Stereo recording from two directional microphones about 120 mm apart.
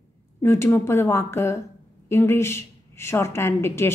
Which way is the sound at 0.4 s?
20° left (ahead or behind).